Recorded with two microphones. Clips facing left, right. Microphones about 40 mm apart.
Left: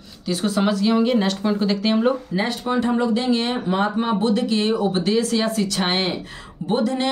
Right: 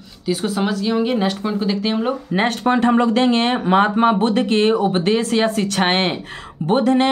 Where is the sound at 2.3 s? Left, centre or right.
Right.